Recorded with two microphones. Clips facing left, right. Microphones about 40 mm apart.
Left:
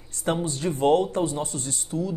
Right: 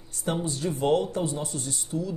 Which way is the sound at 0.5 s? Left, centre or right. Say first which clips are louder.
Left 3 dB; left.